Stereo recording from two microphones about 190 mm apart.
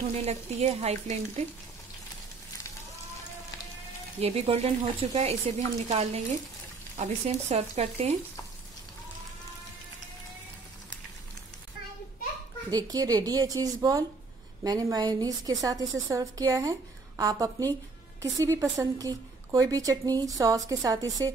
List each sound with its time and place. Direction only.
0.1 s speech: 35° right (ahead or behind)
4.2 s speech: 35° right (ahead or behind)
12.6 s a woman's voice: 20° right (ahead or behind)